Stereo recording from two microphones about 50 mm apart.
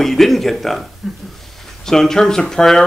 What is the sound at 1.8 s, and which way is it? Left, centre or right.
Speech, centre.